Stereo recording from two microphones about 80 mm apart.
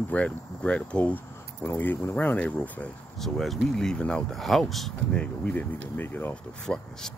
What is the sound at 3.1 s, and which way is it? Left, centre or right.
Speech, centre.